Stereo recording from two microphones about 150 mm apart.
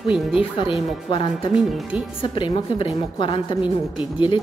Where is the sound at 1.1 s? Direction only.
35° left (ahead or behind).